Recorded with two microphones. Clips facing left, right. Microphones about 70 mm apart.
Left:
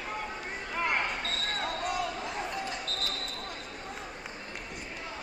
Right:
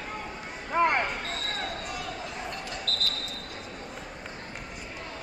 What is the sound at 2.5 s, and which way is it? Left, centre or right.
Basketball bounce, right.